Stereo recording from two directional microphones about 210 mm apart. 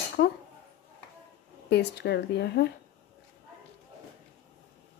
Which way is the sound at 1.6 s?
55° left (ahead or behind).